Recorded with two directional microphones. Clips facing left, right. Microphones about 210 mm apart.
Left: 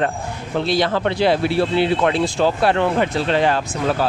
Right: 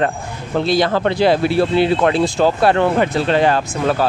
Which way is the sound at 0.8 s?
40° right (ahead or behind).